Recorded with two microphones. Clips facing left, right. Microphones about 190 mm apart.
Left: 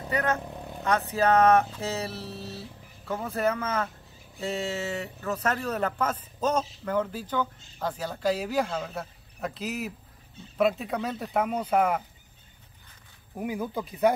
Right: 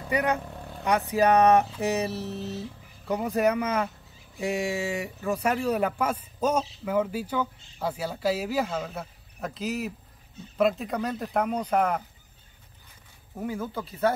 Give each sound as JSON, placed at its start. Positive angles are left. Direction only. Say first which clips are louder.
{"t": 0.1, "sound": "speech", "louder": "right 2 dB", "side_deg": -15}
{"t": 0.4, "sound": "vehicle", "louder": "left 1 dB", "side_deg": 15}
{"t": 0.8, "sound": "speech", "louder": "right 2 dB", "side_deg": -15}
{"t": 13.4, "sound": "speech", "louder": "left 1 dB", "side_deg": 15}